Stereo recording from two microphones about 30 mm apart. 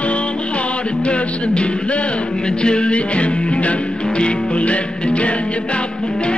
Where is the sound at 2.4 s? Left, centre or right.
Left.